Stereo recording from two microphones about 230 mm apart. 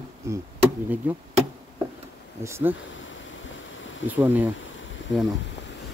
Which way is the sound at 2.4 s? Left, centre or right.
Centre.